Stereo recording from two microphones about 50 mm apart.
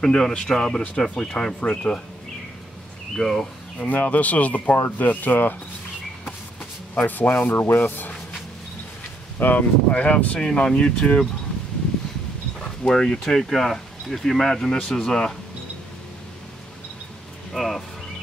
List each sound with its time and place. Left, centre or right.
0.0 s speech: centre
3.2 s speech: centre
3.8 s speech: left
7.0 s speech: left
7.5 s rub: left
9.4 s speech: left
12.5 s a sound: centre
13.3 s speech: centre
17.5 s a sound: centre